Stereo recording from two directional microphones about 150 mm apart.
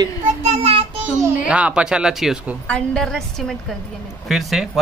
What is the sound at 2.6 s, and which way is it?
Speech, 5° left (ahead or behind).